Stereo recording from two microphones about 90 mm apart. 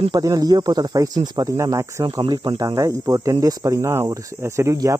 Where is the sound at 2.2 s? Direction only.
65° right (ahead or behind).